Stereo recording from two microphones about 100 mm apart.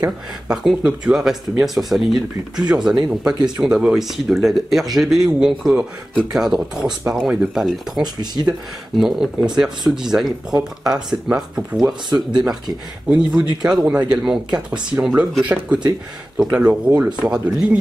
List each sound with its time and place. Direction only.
0.0 s speech: 10° right (ahead or behind)
8.0 s speech: 45° right (ahead or behind)
8.5 s speech: 5° right (ahead or behind)
12.1 s speech: 45° right (ahead or behind)
13.1 s speech: 10° right (ahead or behind)